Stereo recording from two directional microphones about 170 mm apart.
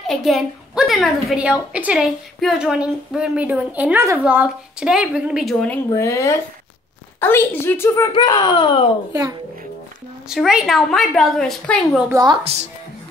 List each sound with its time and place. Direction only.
0.0 s a woman's voice: centre (ahead or behind)
5.9 s a woman's voice: 15° left (ahead or behind)
9.1 s a child's voice: 20° right (ahead or behind)
10.3 s a woman's voice: 5° right (ahead or behind)
12.1 s a child's voice: 25° right (ahead or behind)